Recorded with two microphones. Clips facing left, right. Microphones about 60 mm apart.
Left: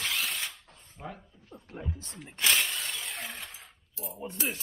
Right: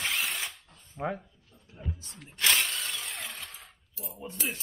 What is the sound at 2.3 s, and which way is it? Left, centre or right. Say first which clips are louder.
Shatter: even; centre.